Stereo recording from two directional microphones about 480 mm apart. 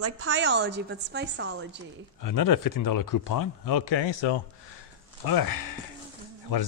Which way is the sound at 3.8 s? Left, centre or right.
Left.